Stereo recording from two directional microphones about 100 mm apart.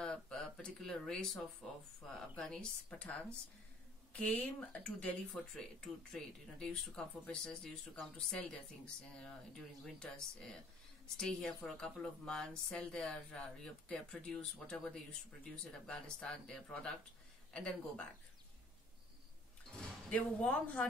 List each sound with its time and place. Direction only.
0.0 s a sound: 5° left (ahead or behind)
1.6 s speech: 10° left (ahead or behind)
20.1 s speech: 10° left (ahead or behind)